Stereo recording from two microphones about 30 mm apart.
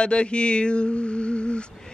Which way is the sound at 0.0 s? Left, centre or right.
Left.